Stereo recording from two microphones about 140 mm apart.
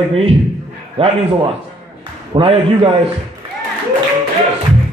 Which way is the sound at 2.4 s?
40° right (ahead or behind).